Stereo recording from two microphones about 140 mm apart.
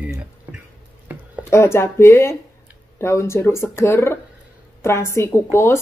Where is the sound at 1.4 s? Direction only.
20° left (ahead or behind).